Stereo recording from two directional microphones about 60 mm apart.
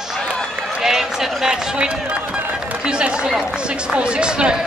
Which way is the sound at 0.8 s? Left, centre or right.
Centre.